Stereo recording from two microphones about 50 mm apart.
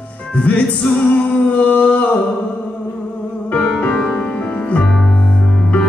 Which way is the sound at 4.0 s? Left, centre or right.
Centre.